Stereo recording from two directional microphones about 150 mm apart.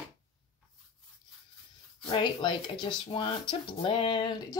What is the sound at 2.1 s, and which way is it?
Speech, 35° left (ahead or behind).